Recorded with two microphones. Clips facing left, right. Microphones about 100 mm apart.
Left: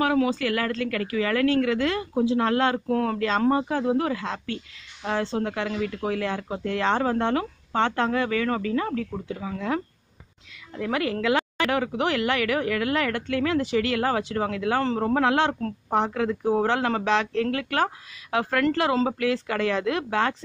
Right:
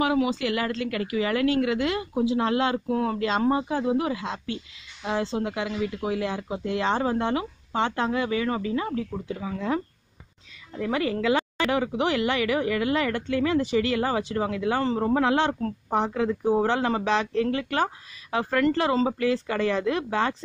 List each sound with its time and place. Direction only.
0.0 s speech: 15° right (ahead or behind)